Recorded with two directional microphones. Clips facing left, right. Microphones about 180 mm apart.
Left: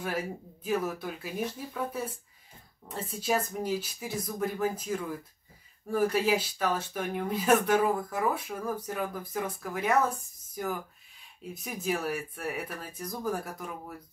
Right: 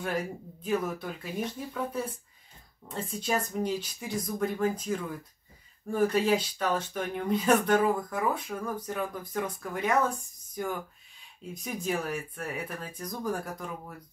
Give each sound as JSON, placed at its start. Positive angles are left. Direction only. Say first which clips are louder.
{"t": 0.0, "sound": "speech", "louder": "right 1 dB", "side_deg": 5}